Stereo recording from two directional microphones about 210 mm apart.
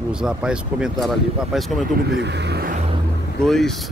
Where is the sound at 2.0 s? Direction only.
50° right (ahead or behind).